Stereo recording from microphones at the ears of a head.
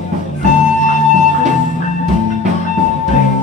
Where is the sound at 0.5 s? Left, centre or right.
Left.